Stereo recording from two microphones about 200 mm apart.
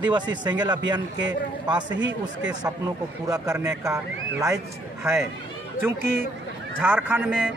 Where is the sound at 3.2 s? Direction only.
15° right (ahead or behind).